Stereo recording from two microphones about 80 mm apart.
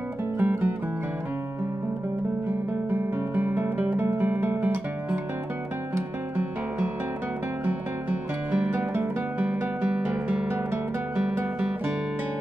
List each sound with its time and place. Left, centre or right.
0.4 s music: right
2.4 s music: right
5.9 s guitar: right
8.5 s music: right